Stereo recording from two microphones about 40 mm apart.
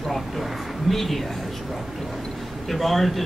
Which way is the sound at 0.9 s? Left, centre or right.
Centre.